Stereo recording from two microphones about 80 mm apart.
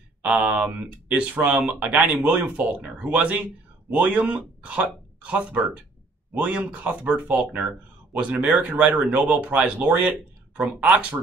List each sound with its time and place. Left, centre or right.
0.2 s speech: centre